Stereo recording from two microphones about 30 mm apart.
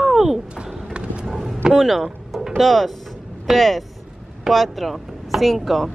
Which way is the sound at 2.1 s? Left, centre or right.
Centre.